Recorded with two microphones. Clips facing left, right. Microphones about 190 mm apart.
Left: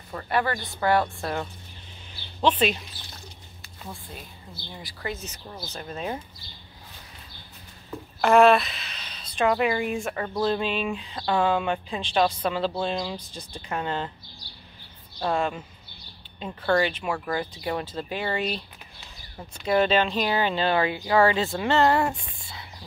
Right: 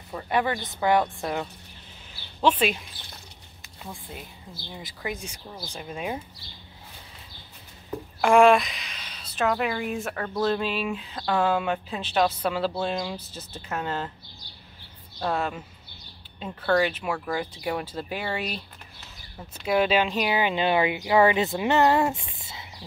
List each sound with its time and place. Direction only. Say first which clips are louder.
0.1 s speech: even; 10° right (ahead or behind)
2.4 s speech: even; 10° right (ahead or behind)
4.7 s speech: even; 15° right (ahead or behind)
8.2 s a woman's voice: even; 10° right (ahead or behind)
15.1 s speech: left 2 dB; 5° right (ahead or behind)
16.7 s speech: even; 5° right (ahead or behind); by 22.7 s 20° right (ahead or behind)